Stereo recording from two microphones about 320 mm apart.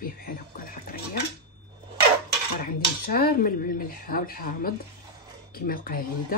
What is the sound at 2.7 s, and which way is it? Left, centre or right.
Speech, left.